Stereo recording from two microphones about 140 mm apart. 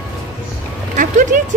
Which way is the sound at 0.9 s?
70° right (ahead or behind).